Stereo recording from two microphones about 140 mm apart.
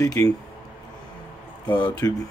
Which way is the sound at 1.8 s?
25° left (ahead or behind).